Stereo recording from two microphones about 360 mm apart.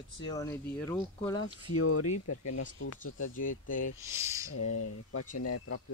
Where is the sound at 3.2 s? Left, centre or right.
Left.